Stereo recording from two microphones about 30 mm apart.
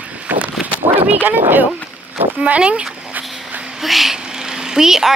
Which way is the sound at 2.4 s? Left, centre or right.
Right.